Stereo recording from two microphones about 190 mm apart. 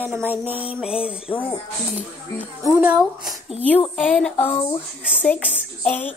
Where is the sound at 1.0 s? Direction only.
5° right (ahead or behind).